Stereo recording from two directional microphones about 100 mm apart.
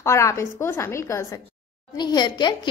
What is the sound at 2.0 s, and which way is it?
Speech, 50° left (ahead or behind).